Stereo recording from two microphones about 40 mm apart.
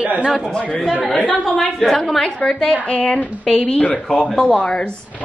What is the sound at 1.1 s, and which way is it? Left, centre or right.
Speech, left.